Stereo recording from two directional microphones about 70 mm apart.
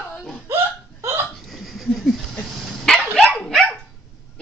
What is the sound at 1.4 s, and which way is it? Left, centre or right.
Hiccup, centre.